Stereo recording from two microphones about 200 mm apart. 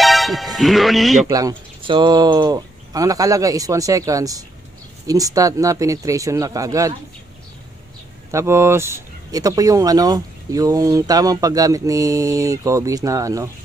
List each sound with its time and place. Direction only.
0.0 s speech: centre (ahead or behind)
1.2 s speech: 20° right (ahead or behind)
8.3 s speech: 15° right (ahead or behind)